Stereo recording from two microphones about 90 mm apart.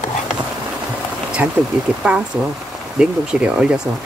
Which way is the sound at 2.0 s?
15° right (ahead or behind).